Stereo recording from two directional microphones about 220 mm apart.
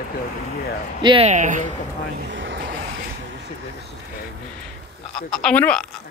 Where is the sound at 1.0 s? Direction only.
25° right (ahead or behind).